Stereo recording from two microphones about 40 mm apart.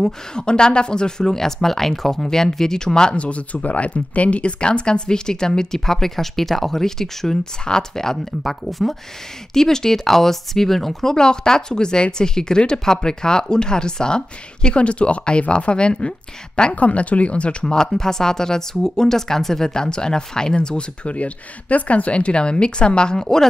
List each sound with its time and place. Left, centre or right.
0.0 s speech: centre
3.2 s speech: left
16.7 s speech: left
17.7 s speech: centre
23.2 s speech: centre